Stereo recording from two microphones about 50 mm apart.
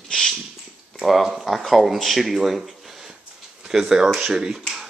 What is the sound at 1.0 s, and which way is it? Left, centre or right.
Speech, centre.